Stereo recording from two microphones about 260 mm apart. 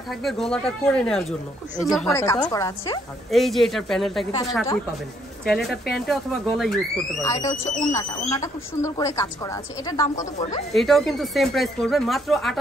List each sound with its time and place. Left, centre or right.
0.1 s speech: centre
2.1 s speech: centre
3.3 s speech: centre
5.4 s speech: centre
7.2 s speech: centre
10.7 s speech: centre